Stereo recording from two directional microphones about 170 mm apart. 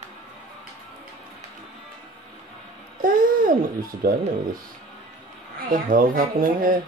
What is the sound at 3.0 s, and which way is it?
Babbling, 55° right (ahead or behind).